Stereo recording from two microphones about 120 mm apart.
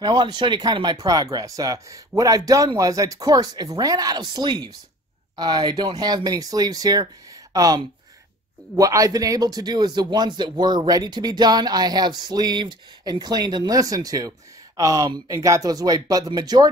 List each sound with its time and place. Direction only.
0.0 s speech: 35° right (ahead or behind)